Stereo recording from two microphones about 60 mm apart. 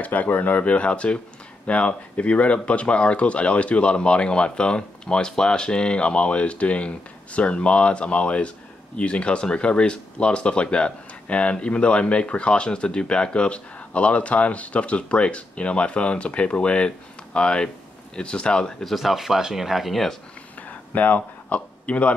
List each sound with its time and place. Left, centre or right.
0.0 s speech: left; by 18.9 s centre
18.9 s speech: centre
20.6 s a sound: left